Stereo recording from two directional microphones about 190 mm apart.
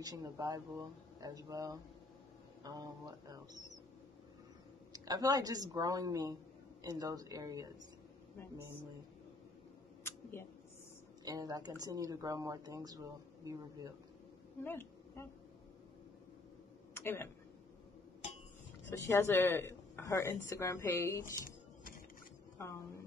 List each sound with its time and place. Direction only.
0.0 s speech: 20° right (ahead or behind)
4.9 s speech: 20° right (ahead or behind)
11.2 s speech: 20° right (ahead or behind)
14.6 s a woman's voice: 10° left (ahead or behind)
16.9 s a sound: 10° left (ahead or behind)
19.0 s a woman's voice: 10° left (ahead or behind)
21.2 s a sound: 45° left (ahead or behind)
22.6 s a woman's voice: 15° left (ahead or behind)